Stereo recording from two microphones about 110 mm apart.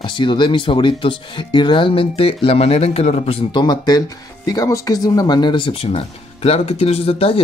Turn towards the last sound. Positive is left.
turn(degrees=60)  # may be behind; listen again after turning